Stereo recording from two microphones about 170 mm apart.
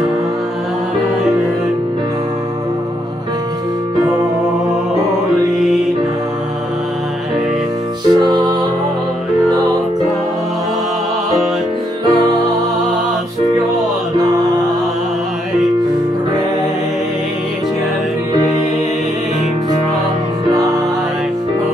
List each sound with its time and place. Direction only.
8.1 s music: 25° right (ahead or behind)
12.1 s music: 20° right (ahead or behind)